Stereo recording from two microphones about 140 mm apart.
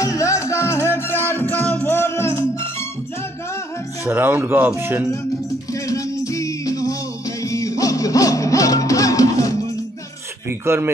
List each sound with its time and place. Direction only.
0.0 s music: 20° left (ahead or behind)
4.0 s speech: 15° right (ahead or behind)
5.7 s music: 25° left (ahead or behind)
10.6 s speech: 15° right (ahead or behind)